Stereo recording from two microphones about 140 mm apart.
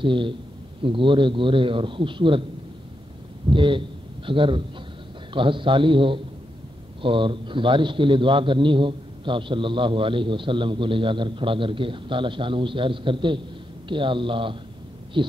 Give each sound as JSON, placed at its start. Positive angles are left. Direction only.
{"t": 0.0, "sound": "a man's voice", "side_deg": -35}
{"t": 3.4, "sound": "a man's voice", "side_deg": -35}